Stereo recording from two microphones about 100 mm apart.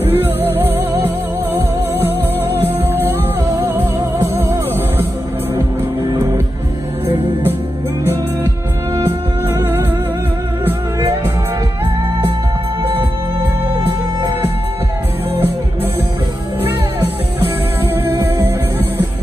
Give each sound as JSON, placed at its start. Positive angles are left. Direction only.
{"t": 0.0, "sound": "music", "side_deg": -20}
{"t": 9.5, "sound": "music", "side_deg": -20}
{"t": 17.9, "sound": "music", "side_deg": -20}